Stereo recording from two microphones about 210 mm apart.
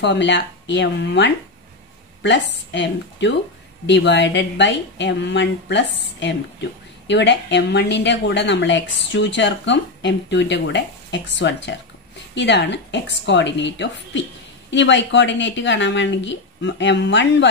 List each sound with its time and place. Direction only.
0.0 s a woman's voice: 55° left (ahead or behind)